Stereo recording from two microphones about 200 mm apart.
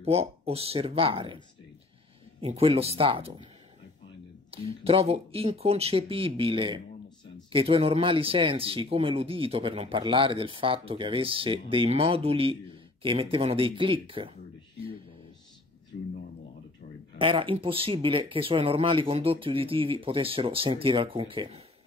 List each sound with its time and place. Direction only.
0.0 s speech: 30° right (ahead or behind)
2.4 s speech: 30° right (ahead or behind)
4.5 s speech: 30° right (ahead or behind)
15.9 s a sound: 60° left (ahead or behind)
17.2 s speech: 25° right (ahead or behind)